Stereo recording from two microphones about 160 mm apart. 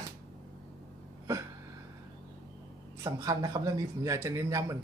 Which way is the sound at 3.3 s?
25° right (ahead or behind).